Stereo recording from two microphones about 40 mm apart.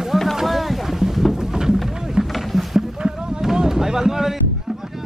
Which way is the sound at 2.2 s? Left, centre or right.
Centre.